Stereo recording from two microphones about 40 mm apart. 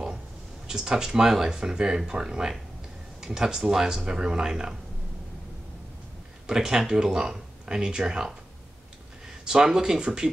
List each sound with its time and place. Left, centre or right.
0.7 s speech: centre
6.4 s speech: centre
9.4 s speech: centre